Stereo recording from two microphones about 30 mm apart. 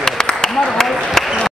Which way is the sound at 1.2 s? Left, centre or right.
Centre.